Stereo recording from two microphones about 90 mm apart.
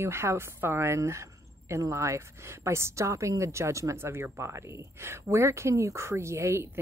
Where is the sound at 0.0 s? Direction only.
30° right (ahead or behind).